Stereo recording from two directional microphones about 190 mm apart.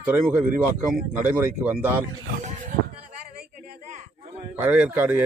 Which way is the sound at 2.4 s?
40° right (ahead or behind).